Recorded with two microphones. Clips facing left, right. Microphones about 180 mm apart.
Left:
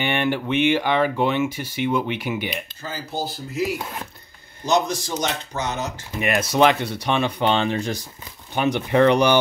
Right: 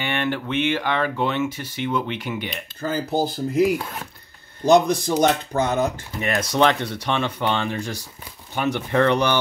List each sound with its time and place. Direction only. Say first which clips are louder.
0.0 s speech: left 2 dB; 15° left (ahead or behind)
2.8 s speech: right 8 dB; 55° right (ahead or behind)
6.2 s speech: left 2 dB; 10° left (ahead or behind)